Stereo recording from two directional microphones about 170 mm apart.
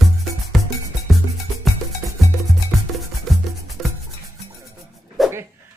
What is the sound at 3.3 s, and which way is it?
Music, centre (ahead or behind).